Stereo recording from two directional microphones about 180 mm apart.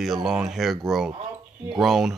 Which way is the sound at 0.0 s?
Centre (ahead or behind).